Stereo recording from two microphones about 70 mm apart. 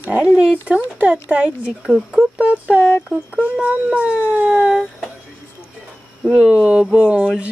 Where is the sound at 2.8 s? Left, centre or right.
Left.